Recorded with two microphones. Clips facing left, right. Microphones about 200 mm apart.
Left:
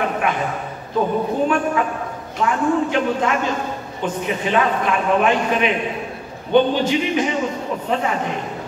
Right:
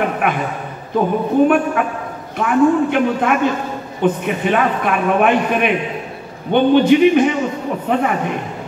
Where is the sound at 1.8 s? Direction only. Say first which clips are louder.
Right 2 dB; 60° right (ahead or behind).